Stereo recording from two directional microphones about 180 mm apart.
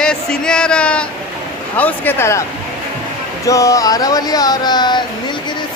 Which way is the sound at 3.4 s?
20° left (ahead or behind).